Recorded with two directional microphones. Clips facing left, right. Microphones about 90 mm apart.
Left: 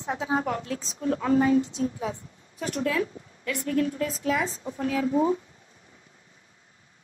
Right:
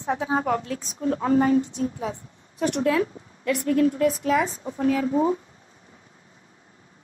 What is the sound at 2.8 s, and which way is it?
A woman's voice, 30° right (ahead or behind).